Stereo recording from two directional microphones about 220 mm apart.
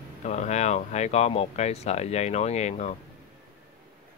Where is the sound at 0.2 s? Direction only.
30° left (ahead or behind).